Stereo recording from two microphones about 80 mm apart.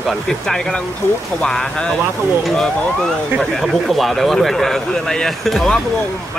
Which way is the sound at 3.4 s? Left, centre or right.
Centre.